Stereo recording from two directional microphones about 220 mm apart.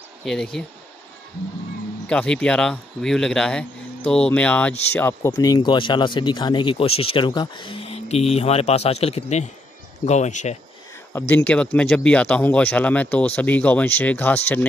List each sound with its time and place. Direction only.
0.2 s speech: centre (ahead or behind)
2.0 s speech: 5° left (ahead or behind); by 10.6 s 30° left (ahead or behind)
11.1 s speech: 10° left (ahead or behind)